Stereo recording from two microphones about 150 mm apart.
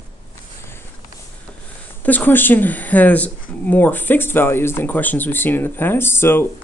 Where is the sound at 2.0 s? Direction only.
10° left (ahead or behind).